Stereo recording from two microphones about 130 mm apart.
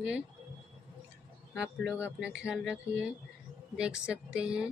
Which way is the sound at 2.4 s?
5° right (ahead or behind).